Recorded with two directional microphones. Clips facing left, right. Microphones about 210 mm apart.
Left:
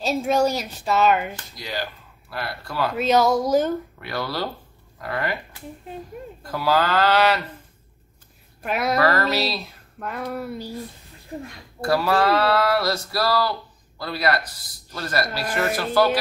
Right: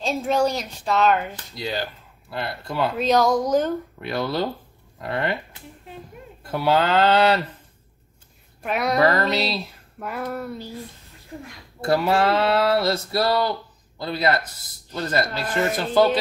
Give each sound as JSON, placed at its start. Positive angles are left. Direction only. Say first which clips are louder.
{"t": 0.0, "sound": "speech", "louder": "left 1 dB", "side_deg": 10}
{"t": 1.5, "sound": "speech", "louder": "right 3 dB", "side_deg": -25}
{"t": 3.0, "sound": "speech", "louder": "left 1 dB", "side_deg": 5}
{"t": 4.0, "sound": "speech", "louder": "right 3 dB", "side_deg": -25}
{"t": 8.6, "sound": "speech", "louder": "even", "side_deg": 0}
{"t": 8.9, "sound": "speech", "louder": "right 2 dB", "side_deg": -20}
{"t": 9.9, "sound": "speech", "louder": "even", "side_deg": -5}
{"t": 11.8, "sound": "speech", "louder": "even", "side_deg": -25}